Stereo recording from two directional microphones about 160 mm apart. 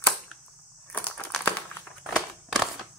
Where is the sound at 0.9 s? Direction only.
10° left (ahead or behind).